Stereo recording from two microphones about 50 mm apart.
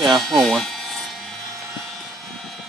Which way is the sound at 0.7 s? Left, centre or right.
Centre.